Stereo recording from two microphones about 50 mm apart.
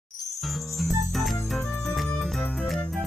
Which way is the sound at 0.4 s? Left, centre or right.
Centre.